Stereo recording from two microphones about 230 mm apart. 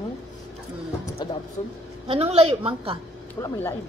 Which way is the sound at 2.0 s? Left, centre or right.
Right.